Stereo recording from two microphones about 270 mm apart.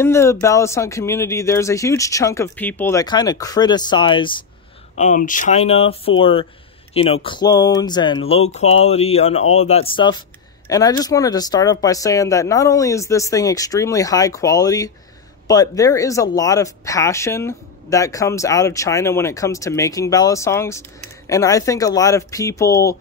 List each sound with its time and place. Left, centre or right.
0.0 s speech: centre
4.9 s speech: left; by 22.9 s centre